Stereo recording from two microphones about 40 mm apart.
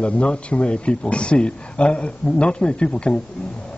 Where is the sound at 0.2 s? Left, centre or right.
Left.